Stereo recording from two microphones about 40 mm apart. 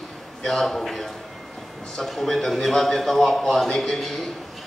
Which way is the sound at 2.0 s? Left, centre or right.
Centre.